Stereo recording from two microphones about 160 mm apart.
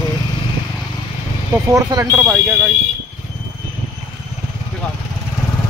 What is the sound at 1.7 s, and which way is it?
Speech, 20° right (ahead or behind).